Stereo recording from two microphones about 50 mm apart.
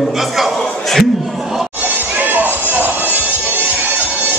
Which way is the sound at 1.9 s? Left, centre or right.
Right.